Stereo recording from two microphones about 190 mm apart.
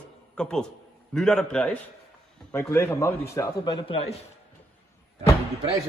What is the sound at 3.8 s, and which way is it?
Speech, 30° left (ahead or behind).